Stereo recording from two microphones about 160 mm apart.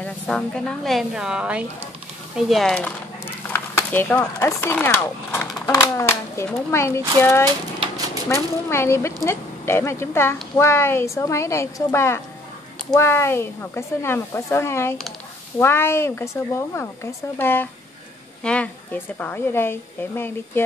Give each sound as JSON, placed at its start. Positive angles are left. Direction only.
{"t": 0.0, "sound": "speech", "side_deg": 5}
{"t": 3.4, "sound": "speech", "side_deg": 15}